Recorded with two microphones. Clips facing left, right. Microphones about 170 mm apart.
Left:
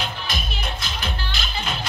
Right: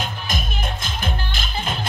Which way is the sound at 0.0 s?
45° right (ahead or behind).